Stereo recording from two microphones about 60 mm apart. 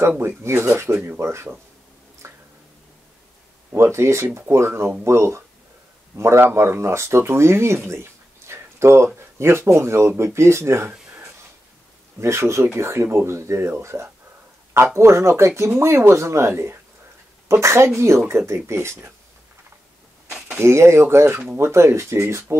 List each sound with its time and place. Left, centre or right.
0.2 s speech: right
2.2 s whispering: right
3.7 s speech: right
12.2 s speech: right
20.2 s a sound: centre
20.5 s speech: right